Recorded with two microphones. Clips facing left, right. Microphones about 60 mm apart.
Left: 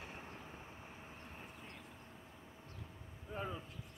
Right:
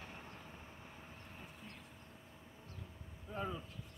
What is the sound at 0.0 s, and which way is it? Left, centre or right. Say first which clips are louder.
Vehicle: left 1 dB; centre.